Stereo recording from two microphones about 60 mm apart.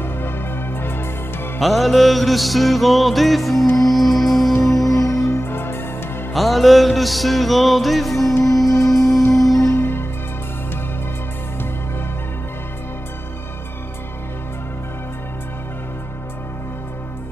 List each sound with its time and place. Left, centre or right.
0.7 s music: left
1.6 s music: centre
5.4 s music: left
6.3 s music: centre
8.7 s music: left
9.3 s music: centre
9.7 s music: left